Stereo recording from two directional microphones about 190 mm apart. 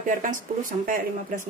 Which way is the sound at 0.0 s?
45° right (ahead or behind).